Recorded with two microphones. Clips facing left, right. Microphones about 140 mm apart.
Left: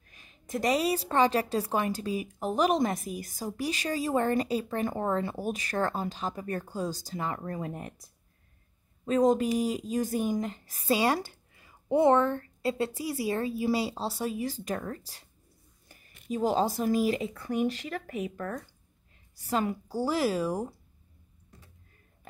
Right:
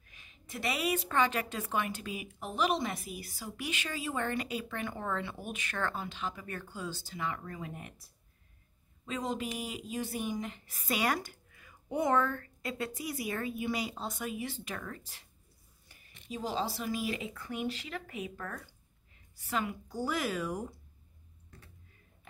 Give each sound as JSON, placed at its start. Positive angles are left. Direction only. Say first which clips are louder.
{"t": 0.0, "sound": "a woman's voice", "louder": "left 3 dB", "side_deg": 40}
{"t": 16.3, "sound": "a woman's voice", "louder": "left 8 dB", "side_deg": 45}